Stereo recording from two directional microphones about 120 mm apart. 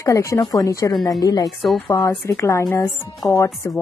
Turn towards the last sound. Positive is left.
turn(degrees=25)  # may be behind; listen again after turning